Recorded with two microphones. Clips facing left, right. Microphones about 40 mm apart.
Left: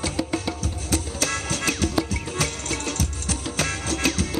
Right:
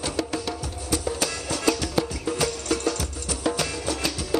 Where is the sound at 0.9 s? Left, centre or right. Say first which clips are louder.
Even; left.